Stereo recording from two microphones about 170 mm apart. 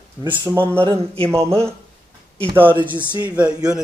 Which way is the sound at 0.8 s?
35° right (ahead or behind).